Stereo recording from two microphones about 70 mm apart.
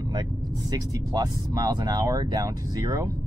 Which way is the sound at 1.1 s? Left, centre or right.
Right.